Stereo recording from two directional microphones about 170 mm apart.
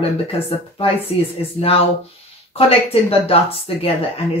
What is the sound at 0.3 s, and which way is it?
Speech, 35° left (ahead or behind).